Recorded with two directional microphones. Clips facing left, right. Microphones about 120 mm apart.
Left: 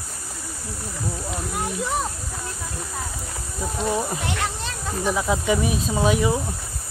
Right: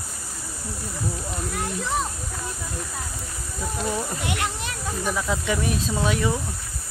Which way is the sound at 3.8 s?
25° left (ahead or behind).